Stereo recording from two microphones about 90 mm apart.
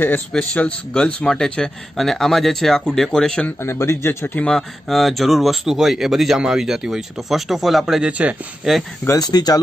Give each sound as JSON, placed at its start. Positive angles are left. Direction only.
{"t": 0.3, "sound": "speech", "side_deg": 10}
{"t": 3.4, "sound": "speech", "side_deg": 30}
{"t": 4.4, "sound": "speech", "side_deg": 5}
{"t": 9.0, "sound": "speech", "side_deg": 40}